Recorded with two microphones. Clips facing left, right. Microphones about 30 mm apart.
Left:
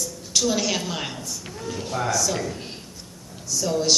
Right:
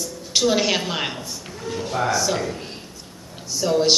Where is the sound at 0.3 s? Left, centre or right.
Right.